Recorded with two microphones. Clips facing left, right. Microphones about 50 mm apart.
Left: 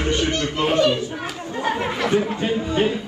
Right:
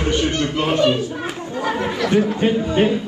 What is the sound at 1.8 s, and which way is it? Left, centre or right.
Speech, left.